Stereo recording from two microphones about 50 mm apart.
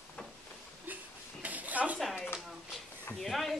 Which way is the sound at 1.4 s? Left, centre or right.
Right.